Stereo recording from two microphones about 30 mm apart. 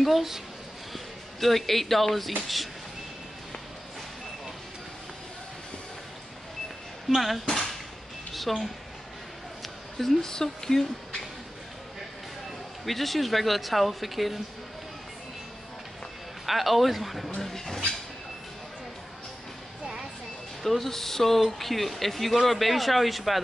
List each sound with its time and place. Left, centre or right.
0.0 s a child's voice: centre
0.9 s speech: centre
7.2 s speech: centre
8.5 s speech: centre
9.6 s a sound: centre
10.2 s speech: centre
12.8 s speech: centre
16.4 s speech: centre
20.6 s speech: centre